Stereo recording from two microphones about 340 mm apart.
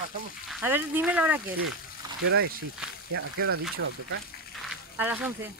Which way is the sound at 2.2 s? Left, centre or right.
Right.